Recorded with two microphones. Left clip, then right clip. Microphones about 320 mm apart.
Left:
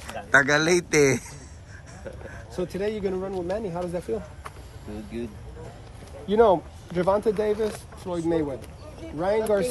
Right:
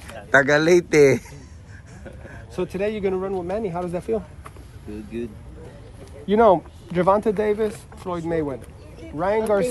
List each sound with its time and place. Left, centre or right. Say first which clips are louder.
0.3 s a man's voice: right 4 dB; centre
2.5 s speech: right 3 dB; centre
6.2 s speech: right 3 dB; centre